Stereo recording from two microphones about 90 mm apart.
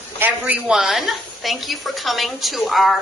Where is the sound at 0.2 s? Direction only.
25° right (ahead or behind).